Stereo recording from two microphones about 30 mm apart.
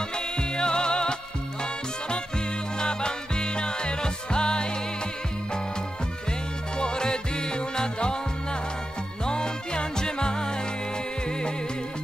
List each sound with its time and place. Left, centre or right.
0.4 s music: left
2.8 s music: left
6.8 s music: left
9.2 s music: left